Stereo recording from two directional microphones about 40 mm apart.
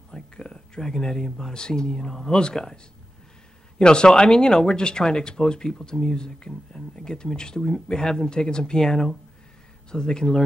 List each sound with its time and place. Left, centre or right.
0.1 s speech: centre
9.8 s speech: centre